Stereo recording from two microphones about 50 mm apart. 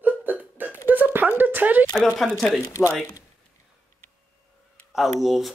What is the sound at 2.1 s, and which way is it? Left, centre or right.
Speech, centre.